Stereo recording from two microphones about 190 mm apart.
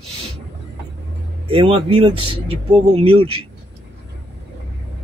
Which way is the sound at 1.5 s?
30° right (ahead or behind).